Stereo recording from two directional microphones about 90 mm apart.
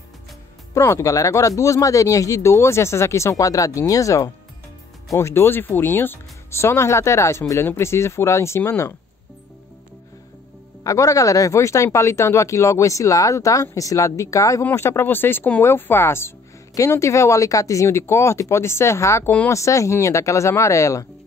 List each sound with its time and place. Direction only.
0.7 s speech: 35° left (ahead or behind)
10.8 s speech: 40° left (ahead or behind)